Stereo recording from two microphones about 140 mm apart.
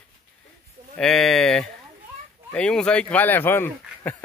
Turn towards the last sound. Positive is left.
turn(degrees=15)  # may be behind; listen again after turning